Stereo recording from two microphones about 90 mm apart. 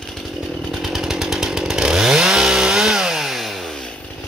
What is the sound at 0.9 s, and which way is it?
Chainsaw, 5° right (ahead or behind).